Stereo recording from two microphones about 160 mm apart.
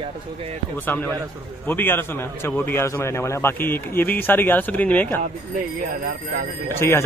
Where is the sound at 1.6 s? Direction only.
10° left (ahead or behind).